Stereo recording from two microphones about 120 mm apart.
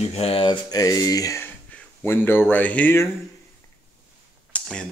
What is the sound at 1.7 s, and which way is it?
Speech, 15° left (ahead or behind).